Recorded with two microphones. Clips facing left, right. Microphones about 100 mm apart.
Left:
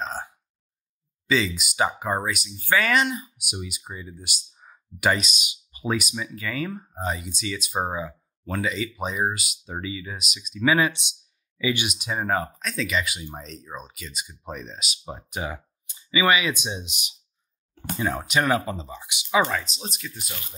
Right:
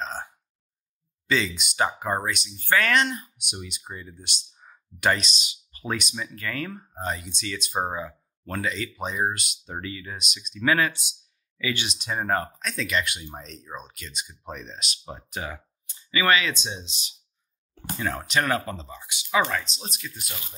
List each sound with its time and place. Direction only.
0.0 s burping: 5° left (ahead or behind)
1.2 s speech: centre (ahead or behind)
5.9 s speech: 5° left (ahead or behind)
19.4 s speech: 5° left (ahead or behind)